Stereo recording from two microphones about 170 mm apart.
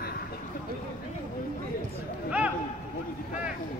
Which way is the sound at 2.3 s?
10° right (ahead or behind).